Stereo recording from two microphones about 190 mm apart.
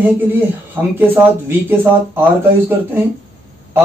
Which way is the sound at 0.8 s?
10° right (ahead or behind).